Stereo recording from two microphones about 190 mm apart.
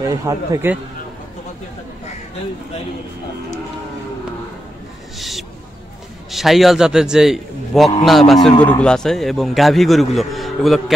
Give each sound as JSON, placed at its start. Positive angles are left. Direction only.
{"t": 0.1, "sound": "a man's voice", "side_deg": -15}
{"t": 6.3, "sound": "a man's voice", "side_deg": 0}